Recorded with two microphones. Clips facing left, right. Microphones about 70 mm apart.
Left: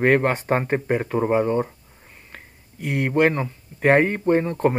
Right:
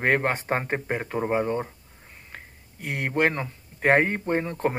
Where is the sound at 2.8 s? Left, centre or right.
Centre.